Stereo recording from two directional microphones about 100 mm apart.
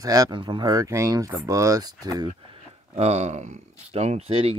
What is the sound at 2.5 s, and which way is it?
Speech, 90° right.